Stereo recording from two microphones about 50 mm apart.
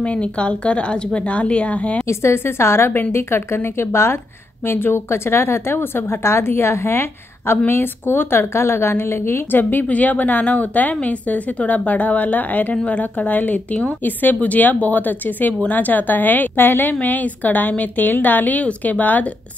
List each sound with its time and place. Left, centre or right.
0.0 s speech: left
2.0 s a woman's voice: left